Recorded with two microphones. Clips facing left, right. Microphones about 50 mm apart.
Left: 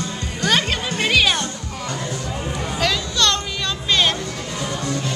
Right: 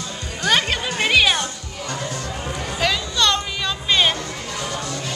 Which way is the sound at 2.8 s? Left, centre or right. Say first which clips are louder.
Even; centre.